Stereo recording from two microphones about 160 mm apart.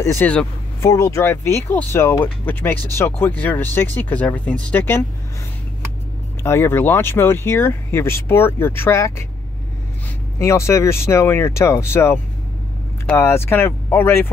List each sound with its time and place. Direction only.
0.0 s speech: 15° left (ahead or behind)
6.4 s speech: 15° left (ahead or behind)
10.4 s speech: 15° left (ahead or behind)